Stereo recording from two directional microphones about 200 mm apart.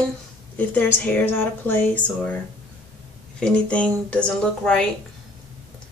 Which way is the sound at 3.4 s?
5° left (ahead or behind).